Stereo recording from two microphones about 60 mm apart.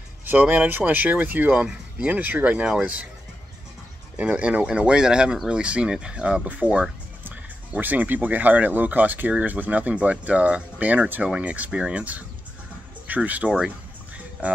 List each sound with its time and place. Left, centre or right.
0.2 s speech: right
4.2 s speech: right
13.7 s music: right